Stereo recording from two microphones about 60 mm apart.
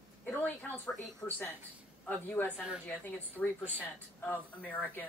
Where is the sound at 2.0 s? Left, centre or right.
Left.